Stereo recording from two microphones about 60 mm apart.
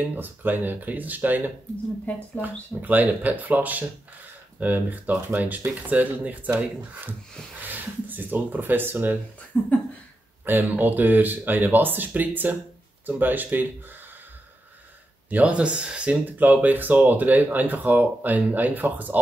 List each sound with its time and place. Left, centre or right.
0.1 s speech: right
2.0 s speech: left
2.4 s speech: right
9.5 s speech: left
10.4 s speech: right
15.2 s speech: right
16.3 s speech: right